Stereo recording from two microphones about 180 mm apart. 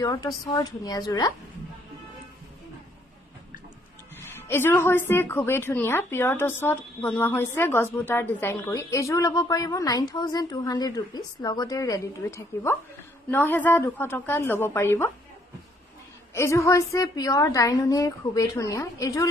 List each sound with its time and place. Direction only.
0.0 s a woman's voice: 25° left (ahead or behind)
4.2 s a woman's voice: 15° left (ahead or behind)
16.3 s a woman's voice: 15° left (ahead or behind)